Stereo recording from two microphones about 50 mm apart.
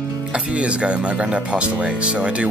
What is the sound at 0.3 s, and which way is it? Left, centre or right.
Speech, right.